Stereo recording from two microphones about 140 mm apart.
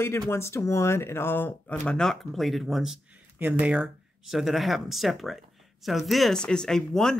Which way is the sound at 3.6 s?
10° right (ahead or behind).